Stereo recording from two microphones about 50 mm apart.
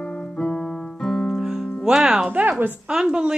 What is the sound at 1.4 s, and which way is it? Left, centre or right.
Music, centre.